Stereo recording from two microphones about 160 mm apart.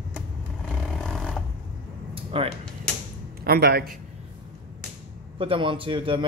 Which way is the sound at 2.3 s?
35° right (ahead or behind).